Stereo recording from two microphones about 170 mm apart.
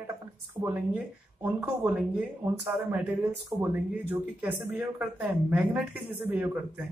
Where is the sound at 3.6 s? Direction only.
10° right (ahead or behind).